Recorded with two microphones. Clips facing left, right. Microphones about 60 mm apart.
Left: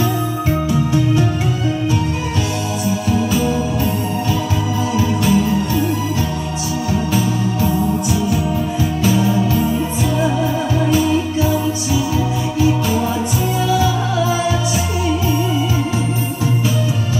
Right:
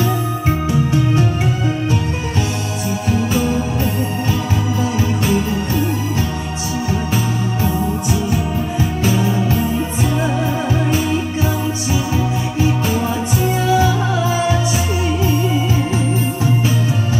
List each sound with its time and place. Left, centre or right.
4.9 s organ: right
13.7 s music: right